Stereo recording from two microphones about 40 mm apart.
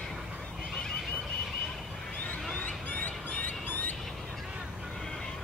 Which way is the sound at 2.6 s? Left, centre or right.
Left.